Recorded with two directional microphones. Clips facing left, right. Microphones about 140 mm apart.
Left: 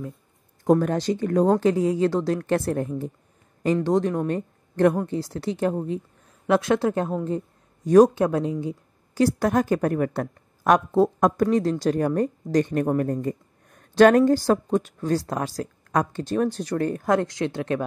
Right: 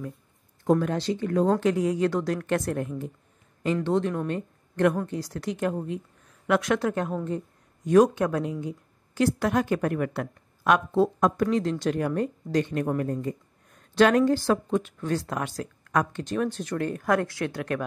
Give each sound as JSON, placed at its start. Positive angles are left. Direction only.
{"t": 0.7, "sound": "a woman's voice", "side_deg": 45}
{"t": 17.0, "sound": "speech", "side_deg": 20}